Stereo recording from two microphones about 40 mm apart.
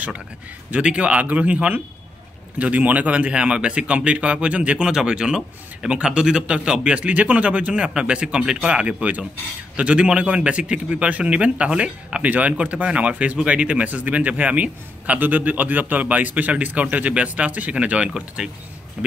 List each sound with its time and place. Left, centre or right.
0.7 s a man's voice: right
4.8 s a man's voice: centre
7.7 s a man's voice: right
11.1 s a man's voice: right
12.3 s a man's voice: right
13.8 s a man's voice: right
15.1 s a man's voice: right
18.1 s speech: centre